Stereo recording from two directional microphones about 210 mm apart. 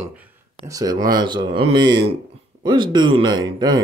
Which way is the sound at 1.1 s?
20° right (ahead or behind).